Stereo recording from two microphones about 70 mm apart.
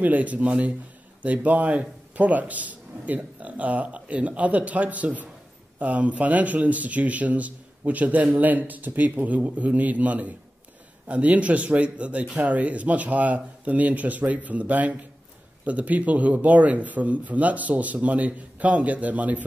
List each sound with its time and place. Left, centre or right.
0.0 s speech: right